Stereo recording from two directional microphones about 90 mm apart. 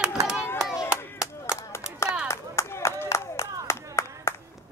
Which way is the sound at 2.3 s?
30° left (ahead or behind).